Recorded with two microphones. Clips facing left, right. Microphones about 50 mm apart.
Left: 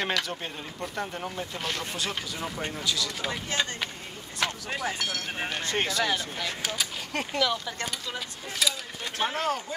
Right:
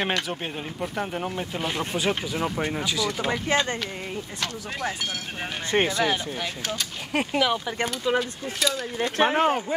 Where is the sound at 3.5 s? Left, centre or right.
Right.